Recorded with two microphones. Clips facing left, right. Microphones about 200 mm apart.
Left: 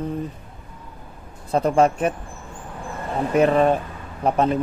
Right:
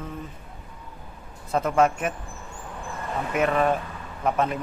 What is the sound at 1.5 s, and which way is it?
Speech, 30° left (ahead or behind).